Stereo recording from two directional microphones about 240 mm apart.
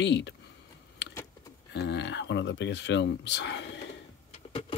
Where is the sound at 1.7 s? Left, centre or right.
Left.